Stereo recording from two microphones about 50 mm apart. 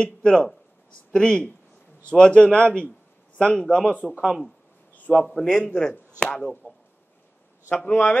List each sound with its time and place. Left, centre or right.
0.0 s a man's voice: centre
5.1 s a man's voice: centre
5.5 s speech: left
7.7 s speech: left